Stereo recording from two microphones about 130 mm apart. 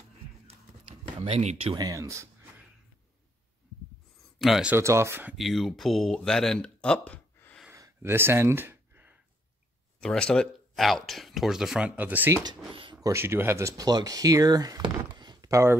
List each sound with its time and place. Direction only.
0.5 s a sound: 45° right (ahead or behind)
1.8 s speech: 25° right (ahead or behind)
4.4 s speech: 5° right (ahead or behind)
4.7 s speech: 20° right (ahead or behind)
5.4 s speech: centre (ahead or behind)
7.7 s a sound: 20° right (ahead or behind)
10.0 s speech: 5° left (ahead or behind); by 12.4 s 15° right (ahead or behind)
12.7 s a sound: 40° right (ahead or behind)
13.0 s speech: 20° right (ahead or behind)